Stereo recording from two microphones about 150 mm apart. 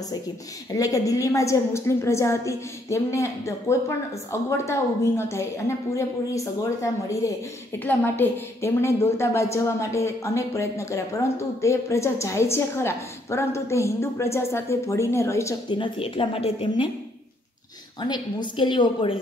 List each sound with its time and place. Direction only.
0.7 s a woman's voice: 25° left (ahead or behind)
15.8 s a woman's voice: 40° left (ahead or behind)
18.0 s a woman's voice: 30° left (ahead or behind)